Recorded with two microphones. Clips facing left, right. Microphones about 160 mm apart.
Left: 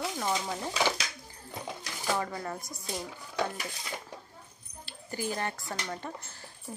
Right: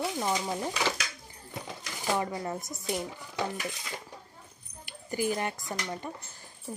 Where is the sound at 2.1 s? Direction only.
20° right (ahead or behind).